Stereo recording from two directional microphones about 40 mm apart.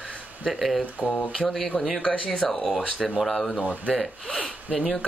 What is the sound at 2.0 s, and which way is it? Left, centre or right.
Speech, left.